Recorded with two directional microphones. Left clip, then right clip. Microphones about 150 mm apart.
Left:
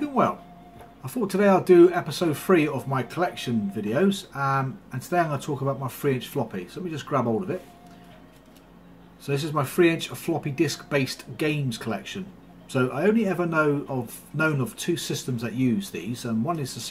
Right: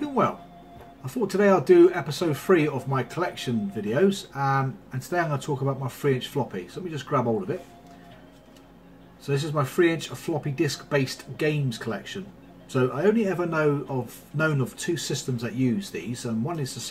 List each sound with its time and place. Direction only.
0.0 s music: 25° left (ahead or behind)
1.0 s speech: 20° left (ahead or behind)
9.2 s speech: 25° left (ahead or behind)